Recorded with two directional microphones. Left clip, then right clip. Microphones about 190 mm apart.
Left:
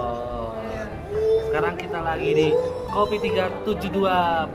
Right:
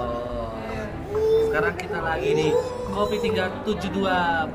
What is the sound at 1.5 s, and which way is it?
Speech, 10° left (ahead or behind).